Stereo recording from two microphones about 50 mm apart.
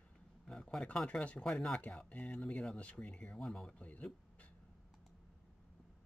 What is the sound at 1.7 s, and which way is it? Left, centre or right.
Speech, left.